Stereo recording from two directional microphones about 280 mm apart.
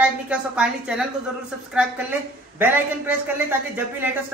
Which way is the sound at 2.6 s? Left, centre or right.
Centre.